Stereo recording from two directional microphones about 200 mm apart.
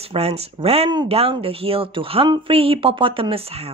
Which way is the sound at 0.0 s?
30° right (ahead or behind).